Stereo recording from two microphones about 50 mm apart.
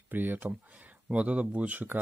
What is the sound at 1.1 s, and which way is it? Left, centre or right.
Speech, right.